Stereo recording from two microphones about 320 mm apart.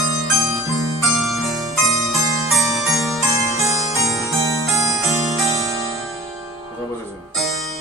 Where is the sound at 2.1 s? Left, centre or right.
Centre.